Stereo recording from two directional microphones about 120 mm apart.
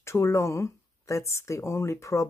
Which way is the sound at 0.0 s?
25° left (ahead or behind).